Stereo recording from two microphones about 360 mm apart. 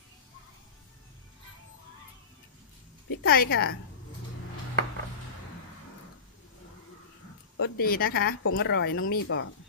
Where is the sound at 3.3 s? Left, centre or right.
Left.